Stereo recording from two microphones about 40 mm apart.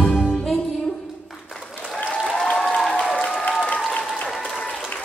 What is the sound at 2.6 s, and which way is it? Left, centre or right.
Applause, centre.